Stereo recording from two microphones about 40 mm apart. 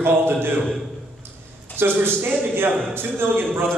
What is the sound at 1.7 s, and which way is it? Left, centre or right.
A man's voice, right.